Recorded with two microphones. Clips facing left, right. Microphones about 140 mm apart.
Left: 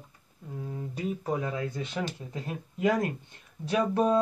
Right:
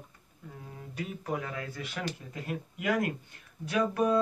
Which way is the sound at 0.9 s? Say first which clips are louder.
Left 3 dB; 25° left (ahead or behind).